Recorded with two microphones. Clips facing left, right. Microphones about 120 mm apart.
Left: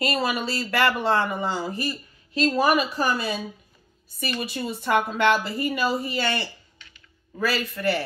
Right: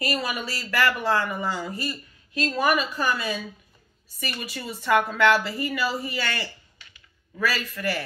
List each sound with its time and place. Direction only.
0.0 s speech: 30° left (ahead or behind)
4.4 s speech: 30° left (ahead or behind)